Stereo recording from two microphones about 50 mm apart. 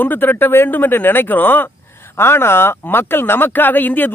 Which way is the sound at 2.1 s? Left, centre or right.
Left.